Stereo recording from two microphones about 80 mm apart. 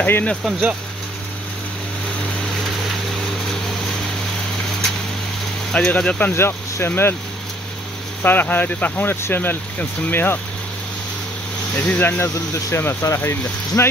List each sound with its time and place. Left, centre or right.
0.0 s speech: centre
5.7 s speech: centre
6.3 s speech: left
8.2 s speech: left
11.7 s speech: left
12.7 s speech: left